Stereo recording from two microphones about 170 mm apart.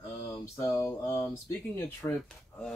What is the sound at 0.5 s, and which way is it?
Speech, 15° left (ahead or behind).